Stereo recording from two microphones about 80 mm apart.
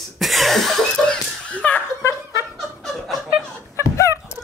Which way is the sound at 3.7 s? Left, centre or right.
Left.